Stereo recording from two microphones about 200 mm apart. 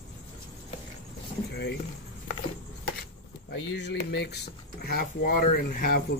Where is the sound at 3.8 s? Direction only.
60° left (ahead or behind).